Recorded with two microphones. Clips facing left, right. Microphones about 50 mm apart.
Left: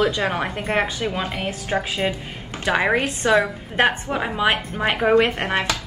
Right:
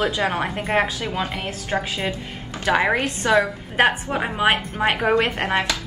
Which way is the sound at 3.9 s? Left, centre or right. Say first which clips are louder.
Even; centre.